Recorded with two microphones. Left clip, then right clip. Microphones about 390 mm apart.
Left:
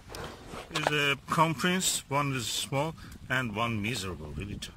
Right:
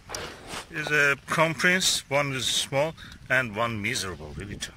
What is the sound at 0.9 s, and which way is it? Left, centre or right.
Speech, centre.